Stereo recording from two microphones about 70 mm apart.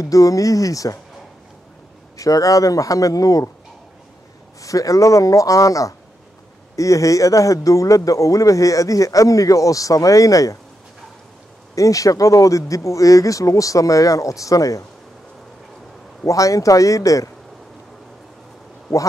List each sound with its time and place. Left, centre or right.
0.0 s speech: left
2.1 s speech: left
4.6 s speech: left
11.7 s speech: left
16.3 s speech: left